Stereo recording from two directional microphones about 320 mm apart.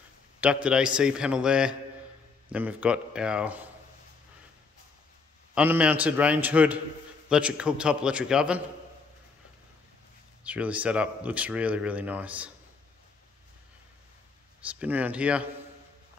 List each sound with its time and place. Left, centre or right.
0.4 s speech: centre
5.5 s speech: centre
10.4 s speech: centre
14.7 s speech: centre